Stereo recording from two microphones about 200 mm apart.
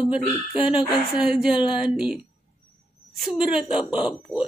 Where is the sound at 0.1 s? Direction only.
5° right (ahead or behind).